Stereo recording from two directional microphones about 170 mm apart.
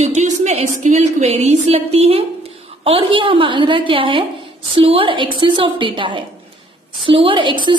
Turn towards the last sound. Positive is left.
turn(degrees=-25)  # may be behind; listen again after turning